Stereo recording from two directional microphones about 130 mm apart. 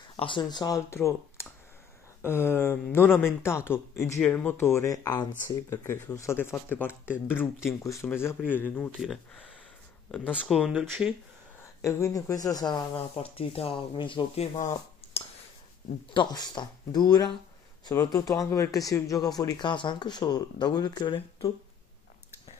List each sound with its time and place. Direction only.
0.1 s speech: 40° left (ahead or behind); by 4.2 s 25° left (ahead or behind)
4.2 s speech: 10° left (ahead or behind)
9.0 s speech: centre (ahead or behind)
10.5 s speech: centre (ahead or behind)
11.8 s speech: 25° left (ahead or behind)
13.1 s speech: 45° left (ahead or behind)
16.1 s speech: 35° left (ahead or behind)